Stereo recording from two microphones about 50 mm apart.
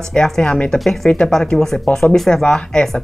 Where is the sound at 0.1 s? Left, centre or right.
Centre.